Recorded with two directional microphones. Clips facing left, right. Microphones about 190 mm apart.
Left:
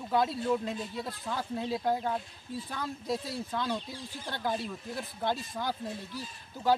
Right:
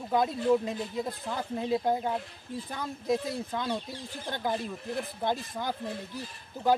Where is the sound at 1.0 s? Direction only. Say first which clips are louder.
Right 3 dB; 20° right (ahead or behind).